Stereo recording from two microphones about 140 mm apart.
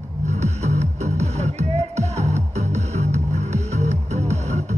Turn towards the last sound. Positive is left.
turn(degrees=-55)  # may be behind; listen again after turning